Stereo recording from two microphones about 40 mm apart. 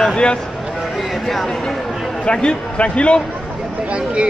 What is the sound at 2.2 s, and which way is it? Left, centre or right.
Speech, left.